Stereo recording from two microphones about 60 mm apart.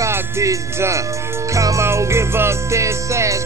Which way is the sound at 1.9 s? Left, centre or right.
Right.